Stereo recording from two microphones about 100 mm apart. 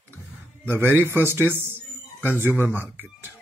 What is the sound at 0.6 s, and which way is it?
Speech, 25° right (ahead or behind).